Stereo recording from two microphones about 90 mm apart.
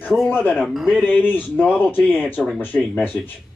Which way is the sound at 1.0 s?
20° left (ahead or behind).